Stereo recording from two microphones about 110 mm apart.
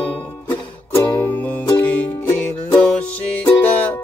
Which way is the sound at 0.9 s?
20° left (ahead or behind).